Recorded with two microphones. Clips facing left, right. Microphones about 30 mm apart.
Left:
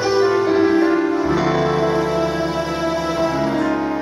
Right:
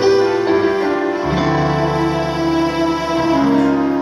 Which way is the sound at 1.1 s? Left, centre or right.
Right.